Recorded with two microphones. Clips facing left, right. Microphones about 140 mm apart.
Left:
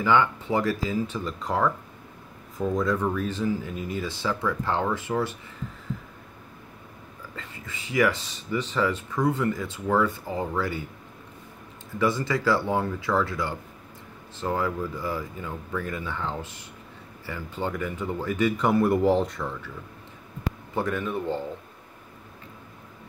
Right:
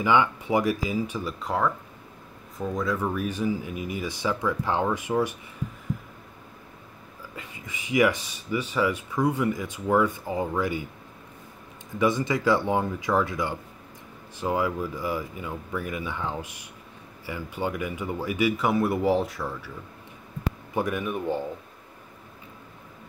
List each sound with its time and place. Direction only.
0.0 s speech: 15° right (ahead or behind)
1.4 s speech: centre (ahead or behind)
7.3 s speech: 15° right (ahead or behind)
12.0 s speech: 15° right (ahead or behind)
20.7 s speech: 15° right (ahead or behind)